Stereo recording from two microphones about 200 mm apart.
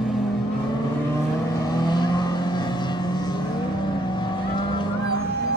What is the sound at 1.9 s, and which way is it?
Vehicle, 20° left (ahead or behind).